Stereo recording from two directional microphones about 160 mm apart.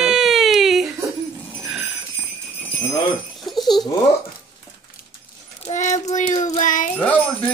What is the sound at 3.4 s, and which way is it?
Goat, centre (ahead or behind).